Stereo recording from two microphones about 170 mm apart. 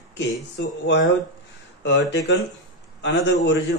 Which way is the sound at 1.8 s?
90° left.